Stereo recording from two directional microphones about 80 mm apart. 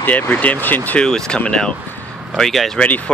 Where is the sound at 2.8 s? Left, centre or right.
Centre.